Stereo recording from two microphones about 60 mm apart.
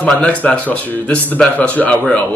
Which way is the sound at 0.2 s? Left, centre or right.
Left.